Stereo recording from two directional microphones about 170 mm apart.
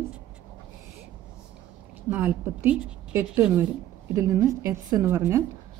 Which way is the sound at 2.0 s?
10° right (ahead or behind).